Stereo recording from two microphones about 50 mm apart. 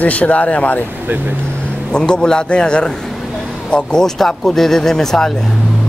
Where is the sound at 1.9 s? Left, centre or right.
Centre.